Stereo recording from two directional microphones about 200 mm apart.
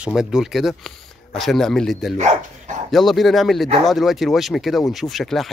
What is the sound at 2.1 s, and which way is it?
Speech, 35° right (ahead or behind).